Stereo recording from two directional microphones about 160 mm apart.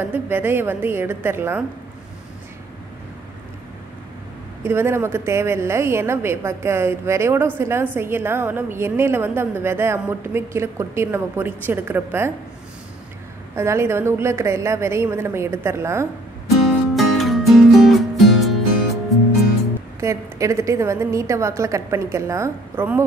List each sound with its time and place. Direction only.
0.0 s a woman's voice: 15° right (ahead or behind)
4.6 s a woman's voice: 15° right (ahead or behind)
13.6 s a woman's voice: 15° right (ahead or behind)
16.9 s music: centre (ahead or behind)
20.0 s a woman's voice: 20° right (ahead or behind)